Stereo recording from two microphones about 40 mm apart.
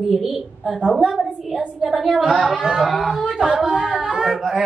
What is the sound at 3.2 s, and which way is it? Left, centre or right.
Singing, right.